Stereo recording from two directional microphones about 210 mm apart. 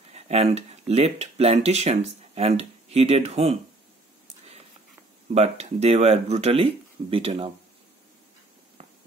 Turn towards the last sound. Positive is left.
turn(degrees=-25)  # may be behind; listen again after turning